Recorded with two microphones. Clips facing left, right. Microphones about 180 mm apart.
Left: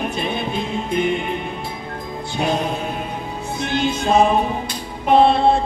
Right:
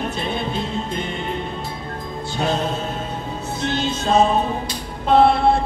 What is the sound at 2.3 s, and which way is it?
Music, 15° left (ahead or behind).